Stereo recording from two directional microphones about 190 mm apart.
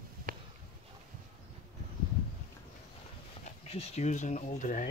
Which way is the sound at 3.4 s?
35° left (ahead or behind).